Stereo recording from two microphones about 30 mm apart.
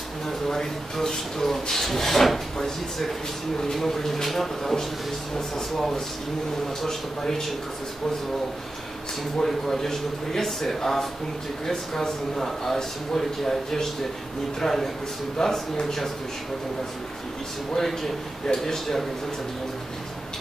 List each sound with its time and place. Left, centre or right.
0.5 s speech: centre
3.6 s speech: centre
9.7 s speech: centre
17.7 s speech: centre